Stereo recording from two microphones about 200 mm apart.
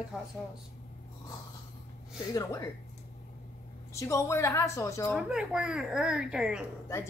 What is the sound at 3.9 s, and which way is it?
A woman's voice, 15° left (ahead or behind).